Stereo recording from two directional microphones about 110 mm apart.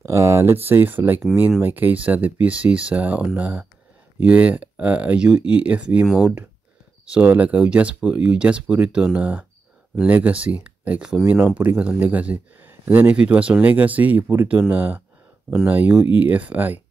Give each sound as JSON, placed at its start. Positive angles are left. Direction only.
{"t": 0.0, "sound": "speech", "side_deg": -25}
{"t": 7.2, "sound": "speech", "side_deg": -15}